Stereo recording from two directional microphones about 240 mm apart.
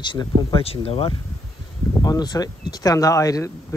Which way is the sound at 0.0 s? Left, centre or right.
Centre.